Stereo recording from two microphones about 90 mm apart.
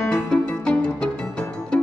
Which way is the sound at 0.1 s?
10° left (ahead or behind).